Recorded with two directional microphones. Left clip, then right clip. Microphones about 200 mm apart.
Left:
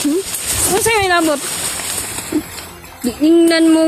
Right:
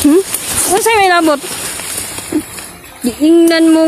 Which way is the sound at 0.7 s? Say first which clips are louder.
Right 5 dB; 25° right (ahead or behind).